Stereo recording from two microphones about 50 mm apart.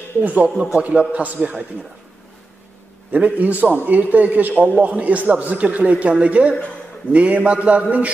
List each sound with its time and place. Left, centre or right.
0.2 s a man's voice: right
3.1 s a man's voice: right